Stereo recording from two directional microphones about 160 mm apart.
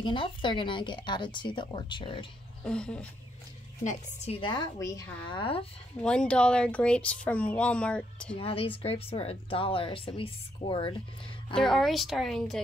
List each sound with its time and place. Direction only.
0.0 s a woman's voice: 30° left (ahead or behind)
2.6 s speech: 5° left (ahead or behind)
3.8 s a woman's voice: 40° left (ahead or behind); by 5.0 s 20° left (ahead or behind)
5.3 s a woman's voice: 35° left (ahead or behind)
5.9 s speech: 5° left (ahead or behind)
8.4 s a woman's voice: 35° left (ahead or behind)
11.5 s speech: centre (ahead or behind)